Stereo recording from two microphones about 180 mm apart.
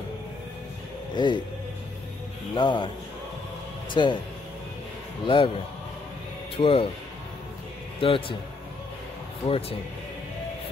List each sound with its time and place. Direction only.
1.1 s speech: 25° left (ahead or behind)
2.5 s a man's voice: 25° left (ahead or behind)
3.9 s a man's voice: 25° left (ahead or behind)
5.2 s a man's voice: 30° left (ahead or behind)
6.5 s speech: 30° left (ahead or behind)
8.0 s a man's voice: 30° left (ahead or behind)
9.5 s speech: 30° left (ahead or behind)